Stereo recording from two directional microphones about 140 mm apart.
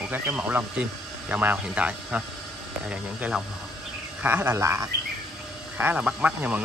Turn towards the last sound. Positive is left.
turn(degrees=-10)  # may be behind; listen again after turning